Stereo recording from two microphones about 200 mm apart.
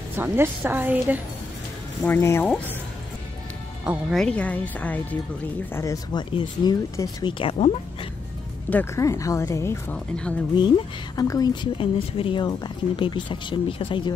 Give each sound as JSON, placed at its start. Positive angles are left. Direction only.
{"t": 0.1, "sound": "a woman's voice", "side_deg": -10}
{"t": 2.0, "sound": "speech", "side_deg": 10}
{"t": 3.8, "sound": "speech", "side_deg": -5}
{"t": 8.6, "sound": "speech", "side_deg": 10}
{"t": 11.1, "sound": "speech", "side_deg": 20}